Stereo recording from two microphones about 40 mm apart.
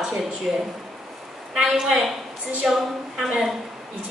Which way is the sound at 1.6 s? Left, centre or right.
Centre.